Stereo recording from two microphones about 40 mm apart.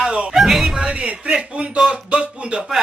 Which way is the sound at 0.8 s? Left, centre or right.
Right.